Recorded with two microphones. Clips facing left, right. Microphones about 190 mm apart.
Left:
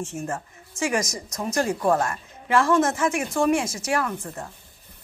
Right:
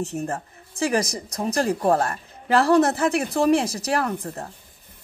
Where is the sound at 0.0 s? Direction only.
35° right (ahead or behind).